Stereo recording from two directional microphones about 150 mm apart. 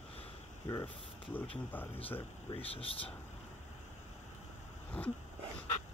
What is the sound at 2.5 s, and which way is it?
Speech, 40° left (ahead or behind).